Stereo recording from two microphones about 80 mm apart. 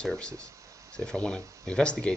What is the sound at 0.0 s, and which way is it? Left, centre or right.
Speech, centre.